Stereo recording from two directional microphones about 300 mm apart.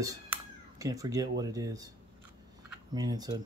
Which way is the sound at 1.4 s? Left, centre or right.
Centre.